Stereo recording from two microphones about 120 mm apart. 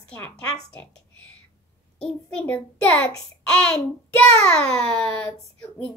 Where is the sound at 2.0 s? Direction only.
10° left (ahead or behind).